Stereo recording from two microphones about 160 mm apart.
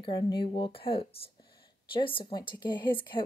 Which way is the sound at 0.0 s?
30° left (ahead or behind).